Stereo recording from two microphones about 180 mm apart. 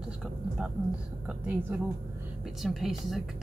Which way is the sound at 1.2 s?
10° right (ahead or behind).